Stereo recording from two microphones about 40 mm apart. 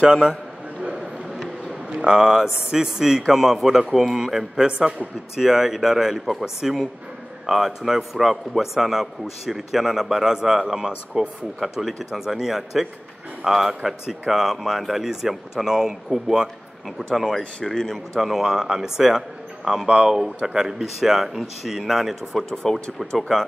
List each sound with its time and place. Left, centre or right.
0.0 s a man's voice: right
0.3 s a sound: centre
1.9 s a man's voice: right
4.6 s a man's voice: right
5.4 s a man's voice: centre
17.6 s speech: centre
18.1 s a man's voice: centre